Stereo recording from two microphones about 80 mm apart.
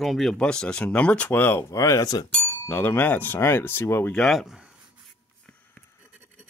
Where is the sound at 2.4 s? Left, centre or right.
Left.